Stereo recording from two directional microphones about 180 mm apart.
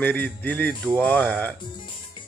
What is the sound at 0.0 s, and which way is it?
Music, 10° left (ahead or behind).